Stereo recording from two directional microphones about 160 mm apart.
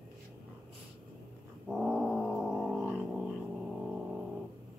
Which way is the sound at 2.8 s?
10° right (ahead or behind).